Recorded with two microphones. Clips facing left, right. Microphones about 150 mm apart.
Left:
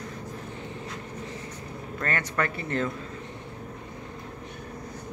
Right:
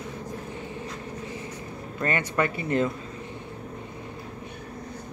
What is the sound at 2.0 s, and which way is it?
Speech, 10° right (ahead or behind).